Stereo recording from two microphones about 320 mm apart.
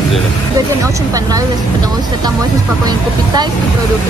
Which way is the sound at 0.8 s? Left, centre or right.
Centre.